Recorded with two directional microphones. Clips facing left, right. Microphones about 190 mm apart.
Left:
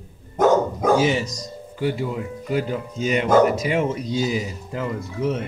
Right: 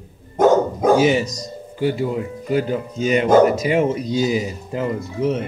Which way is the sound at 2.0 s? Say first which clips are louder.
Right 4 dB; 35° right (ahead or behind).